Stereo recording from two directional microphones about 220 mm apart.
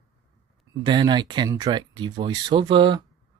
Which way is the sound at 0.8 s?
20° right (ahead or behind).